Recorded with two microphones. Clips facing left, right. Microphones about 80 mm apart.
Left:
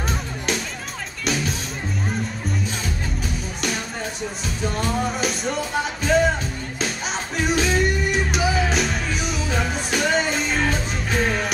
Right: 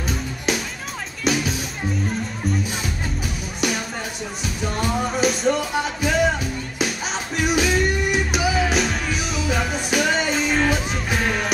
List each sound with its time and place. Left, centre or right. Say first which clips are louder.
0.5 s music: right 2 dB; centre
4.7 s music: right 3 dB; centre
7.3 s music: right 1 dB; centre